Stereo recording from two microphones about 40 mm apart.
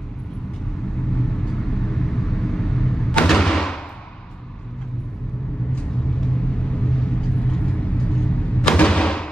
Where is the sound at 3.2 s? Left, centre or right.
Centre.